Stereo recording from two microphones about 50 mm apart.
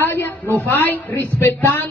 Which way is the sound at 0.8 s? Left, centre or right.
Left.